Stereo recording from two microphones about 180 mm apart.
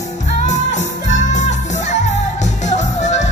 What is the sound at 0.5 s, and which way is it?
Music, 40° left (ahead or behind).